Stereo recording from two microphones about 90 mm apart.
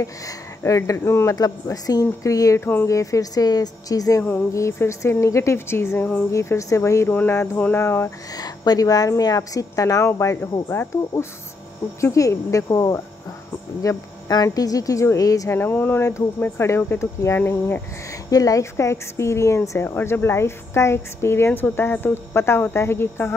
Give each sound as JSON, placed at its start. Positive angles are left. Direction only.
{"t": 0.7, "sound": "a woman's voice", "side_deg": 35}
{"t": 1.3, "sound": "a woman's voice", "side_deg": 45}
{"t": 2.6, "sound": "speech", "side_deg": 25}
{"t": 2.9, "sound": "a woman's voice", "side_deg": 40}
{"t": 4.2, "sound": "speech", "side_deg": 20}
{"t": 4.5, "sound": "a woman's voice", "side_deg": 35}
{"t": 6.3, "sound": "a woman's voice", "side_deg": 35}
{"t": 7.5, "sound": "a sound", "side_deg": 15}
{"t": 7.8, "sound": "speech", "side_deg": 30}
{"t": 8.4, "sound": "a woman's voice", "side_deg": 45}
{"t": 15.6, "sound": "speech", "side_deg": 25}
{"t": 18.3, "sound": "speech", "side_deg": 40}